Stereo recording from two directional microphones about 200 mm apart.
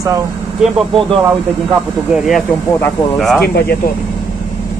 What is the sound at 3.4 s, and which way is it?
Speech, 55° left (ahead or behind).